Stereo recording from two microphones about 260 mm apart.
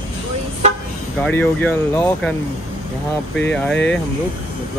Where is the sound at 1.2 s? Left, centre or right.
Centre.